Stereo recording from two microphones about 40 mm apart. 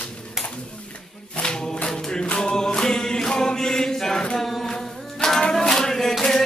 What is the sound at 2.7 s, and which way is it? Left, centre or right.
Chant, centre.